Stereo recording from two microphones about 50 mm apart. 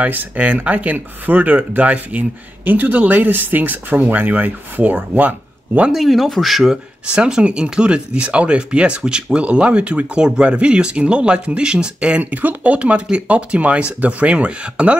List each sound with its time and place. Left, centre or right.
0.0 s speech: right
5.9 s speech: centre
7.2 s speech: centre
12.2 s speech: right